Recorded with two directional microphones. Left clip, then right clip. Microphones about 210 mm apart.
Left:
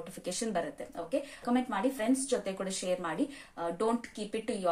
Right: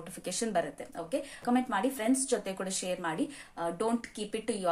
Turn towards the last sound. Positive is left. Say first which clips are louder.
# right 1 dB
turn(degrees=-10)  # may be behind; listen again after turning